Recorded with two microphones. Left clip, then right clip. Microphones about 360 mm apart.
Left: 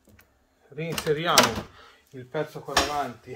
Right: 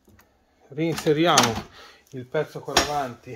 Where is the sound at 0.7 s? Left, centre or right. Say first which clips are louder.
Right 5 dB; right.